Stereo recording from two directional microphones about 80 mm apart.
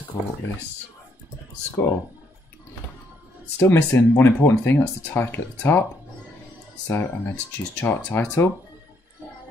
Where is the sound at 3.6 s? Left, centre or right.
Left.